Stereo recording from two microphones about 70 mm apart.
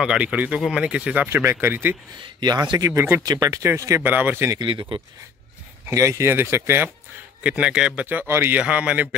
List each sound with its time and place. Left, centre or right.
0.2 s a man's voice: centre
1.3 s speech: right
2.4 s speech: right
2.9 s speech: right
3.3 s speech: right
4.0 s speech: right
5.9 s speech: right
6.3 s speech: right
7.4 s speech: centre
8.3 s speech: right
8.5 s a man's voice: centre